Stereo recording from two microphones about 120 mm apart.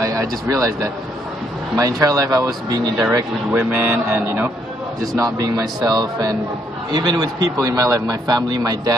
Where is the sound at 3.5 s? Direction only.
15° right (ahead or behind).